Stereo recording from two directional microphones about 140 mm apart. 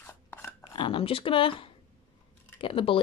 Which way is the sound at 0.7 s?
40° left (ahead or behind).